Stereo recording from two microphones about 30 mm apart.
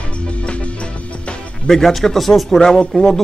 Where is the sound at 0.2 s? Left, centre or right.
Left.